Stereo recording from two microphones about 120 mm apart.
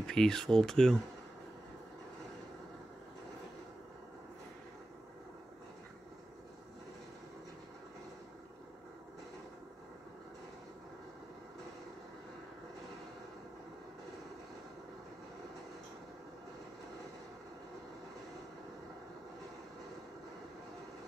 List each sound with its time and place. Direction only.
0.0 s speech: 5° left (ahead or behind)